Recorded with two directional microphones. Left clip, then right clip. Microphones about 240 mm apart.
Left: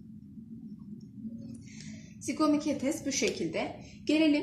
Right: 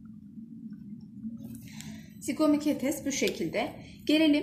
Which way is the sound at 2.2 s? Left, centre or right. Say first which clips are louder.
Right 2 dB; right.